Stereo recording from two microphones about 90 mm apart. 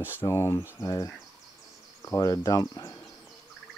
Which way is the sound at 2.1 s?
40° left (ahead or behind).